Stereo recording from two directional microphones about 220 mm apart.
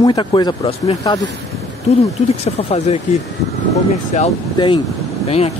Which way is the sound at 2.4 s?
30° left (ahead or behind).